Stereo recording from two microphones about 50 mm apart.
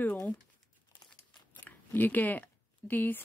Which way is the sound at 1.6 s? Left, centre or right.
Left.